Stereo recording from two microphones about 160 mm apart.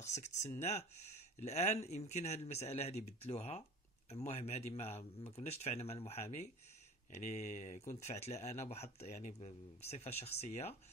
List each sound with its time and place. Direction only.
0.0 s a man's voice: 45° left (ahead or behind)